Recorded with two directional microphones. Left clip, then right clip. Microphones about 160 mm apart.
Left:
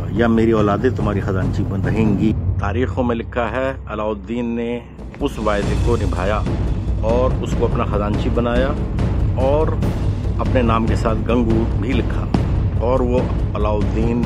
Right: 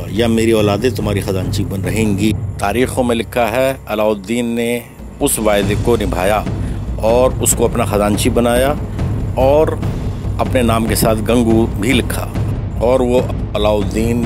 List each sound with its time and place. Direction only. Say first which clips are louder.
0.4 s a man's voice: right 4 dB; 20° right (ahead or behind)
3.1 s speech: right 6 dB; 40° right (ahead or behind)
12.8 s speech: right 6 dB; 30° right (ahead or behind)